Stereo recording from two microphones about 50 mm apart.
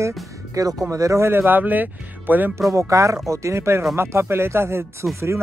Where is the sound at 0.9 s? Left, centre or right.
Right.